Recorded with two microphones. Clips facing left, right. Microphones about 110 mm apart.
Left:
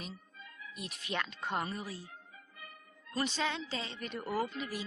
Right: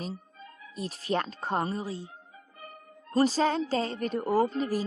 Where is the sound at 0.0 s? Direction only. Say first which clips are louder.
Right 9 dB; 35° right (ahead or behind).